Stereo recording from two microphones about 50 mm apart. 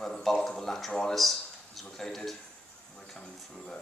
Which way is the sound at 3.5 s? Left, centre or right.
Centre.